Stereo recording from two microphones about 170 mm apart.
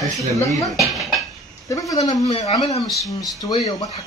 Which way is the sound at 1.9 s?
20° left (ahead or behind).